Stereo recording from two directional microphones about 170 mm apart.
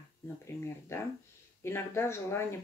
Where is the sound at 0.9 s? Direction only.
15° left (ahead or behind).